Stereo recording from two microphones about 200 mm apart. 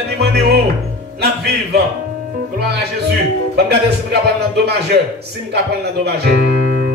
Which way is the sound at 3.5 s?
55° right (ahead or behind).